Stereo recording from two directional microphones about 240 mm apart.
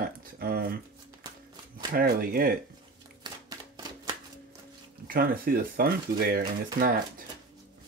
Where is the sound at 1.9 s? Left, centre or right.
Right.